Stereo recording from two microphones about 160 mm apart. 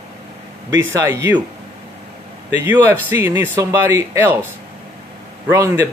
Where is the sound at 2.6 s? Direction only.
15° right (ahead or behind).